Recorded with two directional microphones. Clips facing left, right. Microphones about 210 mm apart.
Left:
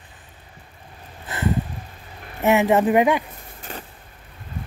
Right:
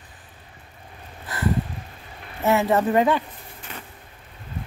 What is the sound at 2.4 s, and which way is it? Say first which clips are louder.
Speech: left 3 dB; 15° left (ahead or behind).